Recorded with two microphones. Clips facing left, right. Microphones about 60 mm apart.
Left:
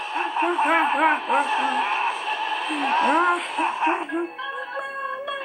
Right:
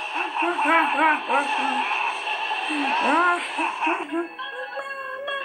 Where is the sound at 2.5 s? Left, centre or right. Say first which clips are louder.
Even; right.